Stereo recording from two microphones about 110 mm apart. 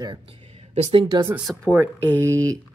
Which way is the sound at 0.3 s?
65° right (ahead or behind).